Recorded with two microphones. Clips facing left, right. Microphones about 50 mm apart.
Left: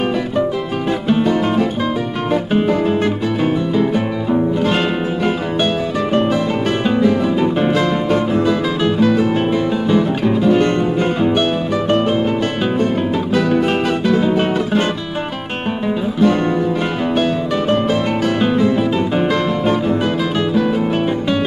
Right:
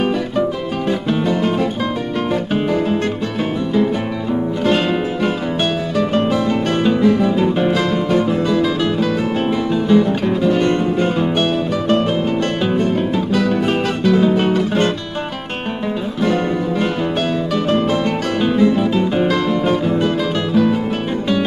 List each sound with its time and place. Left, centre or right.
4.3 s music: centre
6.9 s music: centre
14.0 s music: centre
19.6 s music: centre